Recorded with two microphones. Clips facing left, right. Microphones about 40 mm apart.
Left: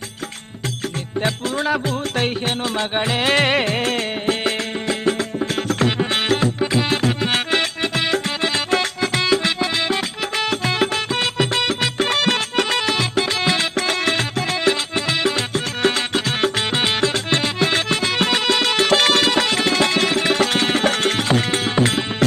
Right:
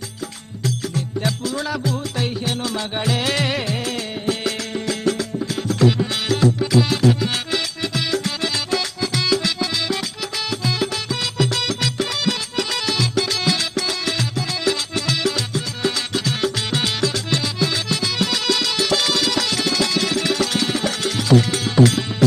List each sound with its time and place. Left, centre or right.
1.2 s music: left
5.6 s music: left
10.5 s music: left
11.3 s music: left